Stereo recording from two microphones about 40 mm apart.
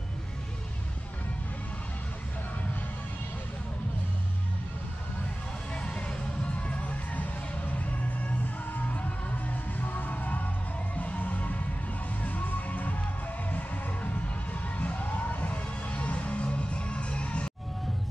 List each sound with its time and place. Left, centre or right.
5.8 s music: left
8.7 s music: left